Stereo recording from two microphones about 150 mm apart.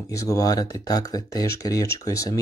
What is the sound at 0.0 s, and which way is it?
Speech, 20° left (ahead or behind).